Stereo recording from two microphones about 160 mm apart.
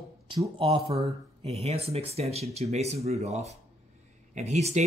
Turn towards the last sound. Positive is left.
turn(degrees=-45)  # may be behind; listen again after turning